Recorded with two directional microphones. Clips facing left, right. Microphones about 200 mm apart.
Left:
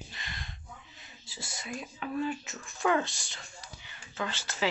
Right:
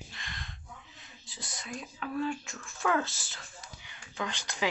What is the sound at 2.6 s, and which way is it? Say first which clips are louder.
Speech: left 3 dB; 15° left (ahead or behind).